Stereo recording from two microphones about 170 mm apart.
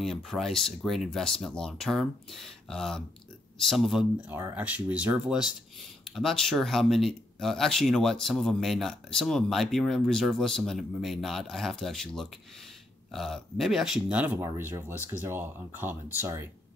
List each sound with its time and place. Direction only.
0.0 s speech: centre (ahead or behind)